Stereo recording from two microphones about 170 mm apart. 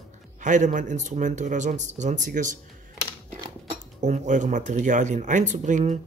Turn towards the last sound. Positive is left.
turn(degrees=-45)  # may be behind; listen again after turning